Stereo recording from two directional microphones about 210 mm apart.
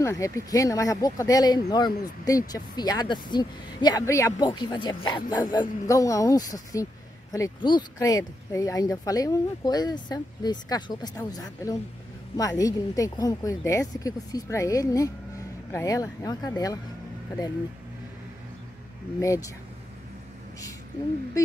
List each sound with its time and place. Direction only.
0.0 s a woman's voice: 15° left (ahead or behind)
19.1 s speech: 15° left (ahead or behind)